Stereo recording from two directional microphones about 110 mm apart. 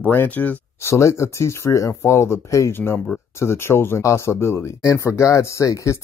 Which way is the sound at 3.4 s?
25° left (ahead or behind).